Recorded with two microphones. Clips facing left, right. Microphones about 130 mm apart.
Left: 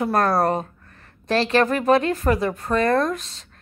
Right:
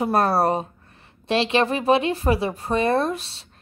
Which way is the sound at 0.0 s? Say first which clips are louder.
Even; 10° right (ahead or behind).